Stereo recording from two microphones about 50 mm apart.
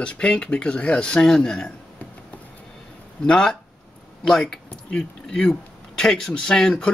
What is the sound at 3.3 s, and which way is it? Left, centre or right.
Speech, centre.